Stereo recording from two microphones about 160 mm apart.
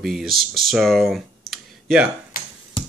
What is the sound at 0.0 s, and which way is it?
Speech, centre (ahead or behind).